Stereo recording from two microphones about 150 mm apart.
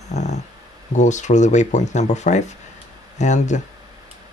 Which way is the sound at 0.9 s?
55° left (ahead or behind).